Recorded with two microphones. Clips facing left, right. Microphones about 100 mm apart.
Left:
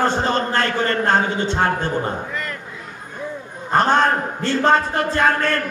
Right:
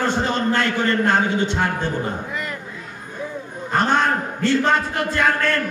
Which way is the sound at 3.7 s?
35° left (ahead or behind).